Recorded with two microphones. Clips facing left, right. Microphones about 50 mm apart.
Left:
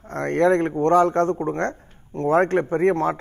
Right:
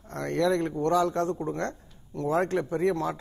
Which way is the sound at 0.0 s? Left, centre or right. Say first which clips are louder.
Left 7 dB; left.